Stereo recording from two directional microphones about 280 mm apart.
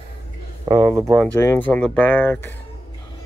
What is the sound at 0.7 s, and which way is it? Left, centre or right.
Speech, centre.